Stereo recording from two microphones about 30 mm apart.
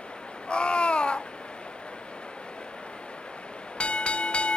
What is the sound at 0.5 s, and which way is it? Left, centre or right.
Babbling, left.